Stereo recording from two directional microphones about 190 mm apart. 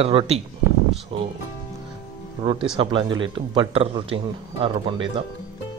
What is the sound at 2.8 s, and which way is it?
A man's voice, 25° right (ahead or behind).